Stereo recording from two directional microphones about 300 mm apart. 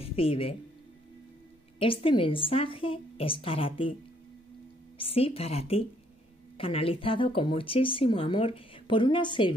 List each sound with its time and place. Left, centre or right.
0.0 s speech: centre
1.8 s speech: centre
4.9 s a woman's voice: centre